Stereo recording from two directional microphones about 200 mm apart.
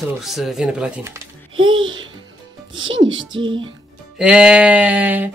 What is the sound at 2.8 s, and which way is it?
Speech, 75° right (ahead or behind).